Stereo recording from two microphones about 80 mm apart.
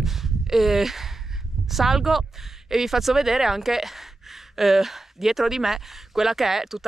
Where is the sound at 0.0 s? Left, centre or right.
Centre.